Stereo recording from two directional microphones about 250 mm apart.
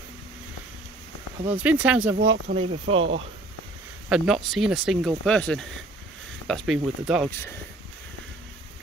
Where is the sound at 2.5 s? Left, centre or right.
Right.